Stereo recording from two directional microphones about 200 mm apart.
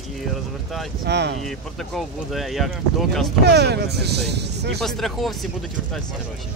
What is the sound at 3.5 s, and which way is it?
Speech, 55° right (ahead or behind).